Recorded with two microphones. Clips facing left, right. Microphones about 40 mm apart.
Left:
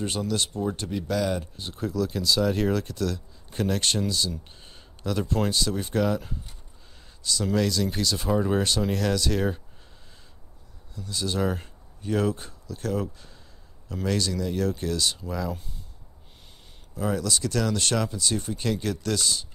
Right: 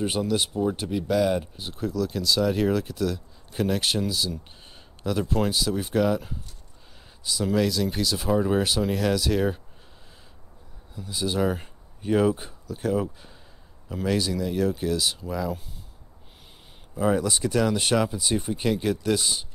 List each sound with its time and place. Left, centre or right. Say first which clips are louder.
0.0 s speech: right 3 dB; centre
11.0 s speech: right 2 dB; centre
16.9 s speech: right 4 dB; centre